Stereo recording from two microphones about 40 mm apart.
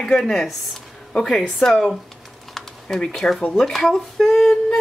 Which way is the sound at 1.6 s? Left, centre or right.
Centre.